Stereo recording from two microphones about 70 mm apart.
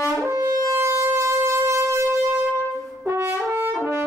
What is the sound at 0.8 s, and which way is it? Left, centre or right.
Siren, right.